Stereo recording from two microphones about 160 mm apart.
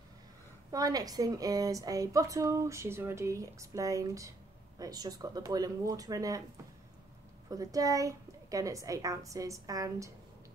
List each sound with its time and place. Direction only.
0.7 s a woman's voice: 20° right (ahead or behind)
7.4 s a woman's voice: 20° right (ahead or behind)